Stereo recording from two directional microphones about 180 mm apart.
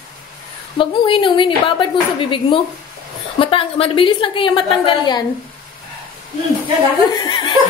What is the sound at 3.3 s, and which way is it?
A woman's voice, 30° left (ahead or behind).